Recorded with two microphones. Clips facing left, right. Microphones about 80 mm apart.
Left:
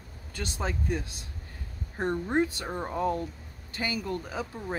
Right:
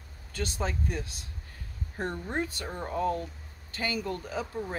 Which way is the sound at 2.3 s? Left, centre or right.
Left.